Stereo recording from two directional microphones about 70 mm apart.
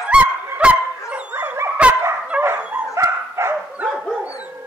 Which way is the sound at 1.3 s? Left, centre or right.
Right.